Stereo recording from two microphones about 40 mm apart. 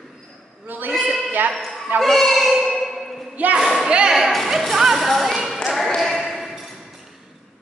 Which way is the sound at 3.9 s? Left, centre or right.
Right.